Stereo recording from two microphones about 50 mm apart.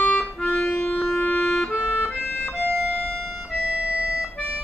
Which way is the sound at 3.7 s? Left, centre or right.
Right.